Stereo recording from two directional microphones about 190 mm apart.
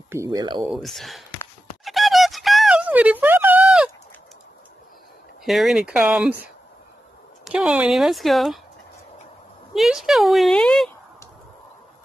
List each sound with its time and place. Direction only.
0.1 s speech: 15° right (ahead or behind)
0.6 s speech: centre (ahead or behind)
1.9 s music: centre (ahead or behind)
5.4 s speech: centre (ahead or behind)
7.4 s speech: 5° right (ahead or behind)
9.8 s speech: centre (ahead or behind)